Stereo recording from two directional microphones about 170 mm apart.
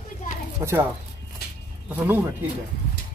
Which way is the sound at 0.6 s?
15° right (ahead or behind).